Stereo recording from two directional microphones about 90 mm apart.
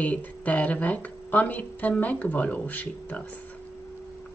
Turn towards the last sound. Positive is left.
turn(degrees=20)  # may be behind; listen again after turning